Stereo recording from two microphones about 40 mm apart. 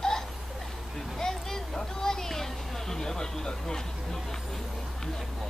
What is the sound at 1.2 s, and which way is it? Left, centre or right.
Speech, centre.